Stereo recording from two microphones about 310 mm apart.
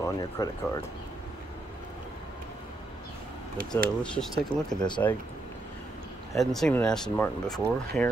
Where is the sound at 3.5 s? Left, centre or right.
Right.